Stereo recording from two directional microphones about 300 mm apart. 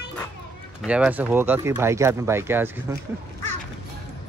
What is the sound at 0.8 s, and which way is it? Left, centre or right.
A man's voice, centre.